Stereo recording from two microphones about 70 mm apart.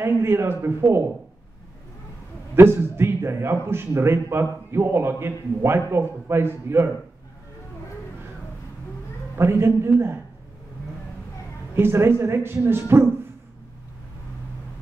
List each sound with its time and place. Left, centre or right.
0.0 s a man's voice: right
2.5 s a man's voice: right
9.4 s a man's voice: right
11.7 s a man's voice: right